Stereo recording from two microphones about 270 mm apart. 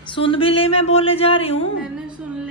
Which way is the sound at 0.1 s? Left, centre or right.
Centre.